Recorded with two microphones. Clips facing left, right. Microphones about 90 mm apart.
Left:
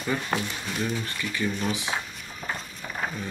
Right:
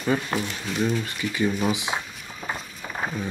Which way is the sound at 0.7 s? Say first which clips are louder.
Right 5 dB; 15° right (ahead or behind).